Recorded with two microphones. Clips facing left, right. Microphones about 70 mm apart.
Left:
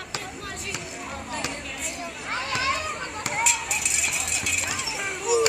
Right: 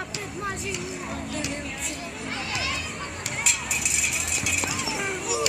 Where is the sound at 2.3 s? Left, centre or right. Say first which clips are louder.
Left 5 dB; left.